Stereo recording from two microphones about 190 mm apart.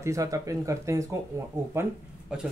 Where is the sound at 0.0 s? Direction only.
15° right (ahead or behind).